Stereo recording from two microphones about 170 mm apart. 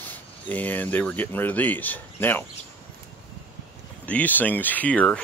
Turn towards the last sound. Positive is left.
turn(degrees=10)  # may be behind; listen again after turning